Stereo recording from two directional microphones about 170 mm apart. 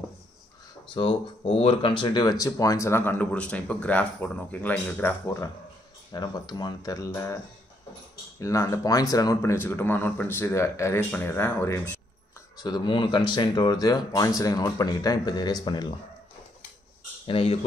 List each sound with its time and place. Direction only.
0.8 s speech: 30° left (ahead or behind)
8.4 s speech: 20° left (ahead or behind)
12.6 s speech: 25° left (ahead or behind)
17.3 s speech: 35° left (ahead or behind)